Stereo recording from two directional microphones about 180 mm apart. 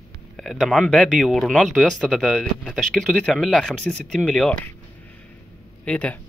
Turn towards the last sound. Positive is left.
turn(degrees=5)  # may be behind; listen again after turning